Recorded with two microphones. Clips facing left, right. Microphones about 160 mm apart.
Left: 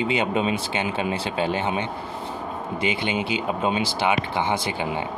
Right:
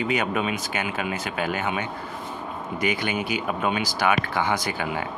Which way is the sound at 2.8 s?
25° left (ahead or behind).